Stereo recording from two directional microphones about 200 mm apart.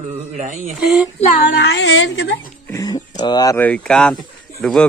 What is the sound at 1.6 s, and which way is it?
Speech, 60° left (ahead or behind).